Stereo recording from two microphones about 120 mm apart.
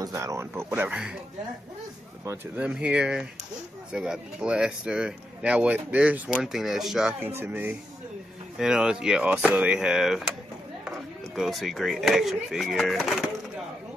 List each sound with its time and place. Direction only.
0.0 s speech: 25° right (ahead or behind); by 1.1 s 10° right (ahead or behind)
2.2 s speech: 10° right (ahead or behind)
7.2 s speech: 20° right (ahead or behind)
8.5 s speech: 5° right (ahead or behind)